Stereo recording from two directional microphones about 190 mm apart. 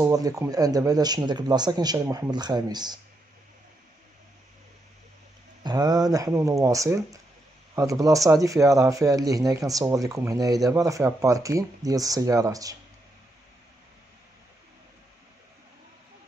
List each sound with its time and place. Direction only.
0.0 s speech: 20° right (ahead or behind)
5.6 s speech: 20° right (ahead or behind)